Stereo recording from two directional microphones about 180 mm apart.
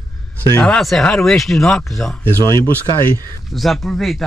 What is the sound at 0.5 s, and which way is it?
Speech, 10° left (ahead or behind).